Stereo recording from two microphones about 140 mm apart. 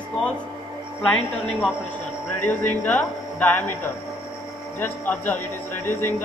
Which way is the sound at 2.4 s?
10° left (ahead or behind).